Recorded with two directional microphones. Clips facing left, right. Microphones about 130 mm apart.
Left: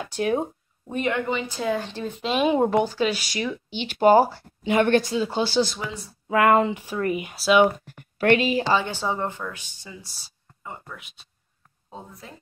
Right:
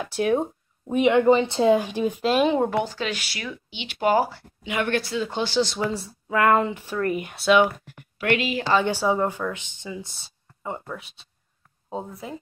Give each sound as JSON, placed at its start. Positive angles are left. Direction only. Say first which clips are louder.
{"t": 0.0, "sound": "a sound", "louder": "right 2 dB", "side_deg": 0}
{"t": 1.2, "sound": "speech", "louder": "right 9 dB", "side_deg": -30}
{"t": 1.8, "sound": "speech", "louder": "right 6 dB", "side_deg": -10}
{"t": 2.2, "sound": "speech", "louder": "right 1 dB", "side_deg": 0}
{"t": 2.5, "sound": "speech", "louder": "left 2 dB", "side_deg": 15}
{"t": 3.7, "sound": "speech", "louder": "left 5 dB", "side_deg": 40}
{"t": 5.0, "sound": "speech", "louder": "left 2 dB", "side_deg": 15}
{"t": 7.8, "sound": "speech", "louder": "left 6 dB", "side_deg": 40}
{"t": 8.8, "sound": "speech", "louder": "right 5 dB", "side_deg": -10}
{"t": 9.5, "sound": "speech", "louder": "right 6 dB", "side_deg": -20}